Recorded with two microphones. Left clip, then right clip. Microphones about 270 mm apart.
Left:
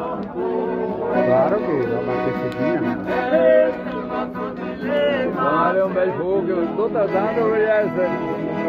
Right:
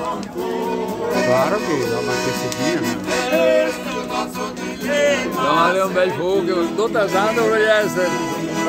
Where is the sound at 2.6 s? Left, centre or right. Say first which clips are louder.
Even; right.